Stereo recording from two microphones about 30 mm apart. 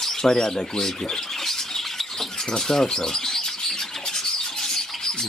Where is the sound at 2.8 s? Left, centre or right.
Centre.